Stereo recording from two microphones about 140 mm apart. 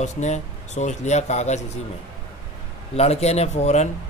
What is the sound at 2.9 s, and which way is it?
Speech, 50° left (ahead or behind).